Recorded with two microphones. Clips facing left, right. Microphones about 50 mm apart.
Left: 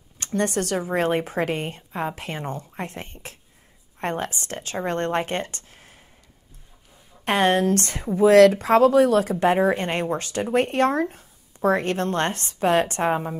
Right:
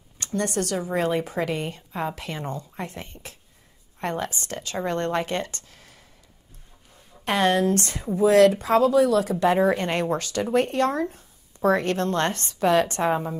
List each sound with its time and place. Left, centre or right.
0.6 s a woman's voice: left
1.8 s a woman's voice: left
5.7 s a sound: left
7.2 s a woman's voice: left
11.6 s speech: left